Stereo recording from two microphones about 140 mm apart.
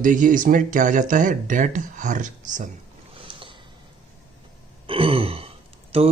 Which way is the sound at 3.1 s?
40° right (ahead or behind).